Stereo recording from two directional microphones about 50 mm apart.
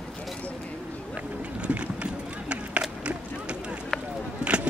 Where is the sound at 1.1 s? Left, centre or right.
Right.